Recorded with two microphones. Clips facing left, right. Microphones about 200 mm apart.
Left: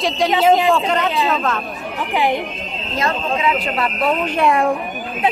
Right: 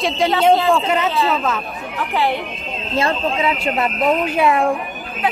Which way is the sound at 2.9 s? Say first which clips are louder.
Right 2 dB; 30° right (ahead or behind).